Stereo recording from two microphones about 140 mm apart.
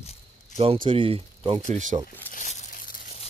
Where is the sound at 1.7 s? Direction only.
65° right (ahead or behind).